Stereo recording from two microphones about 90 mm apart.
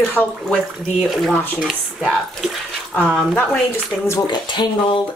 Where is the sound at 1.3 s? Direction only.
20° left (ahead or behind).